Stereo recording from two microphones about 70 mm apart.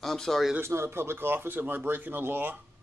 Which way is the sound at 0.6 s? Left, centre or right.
Right.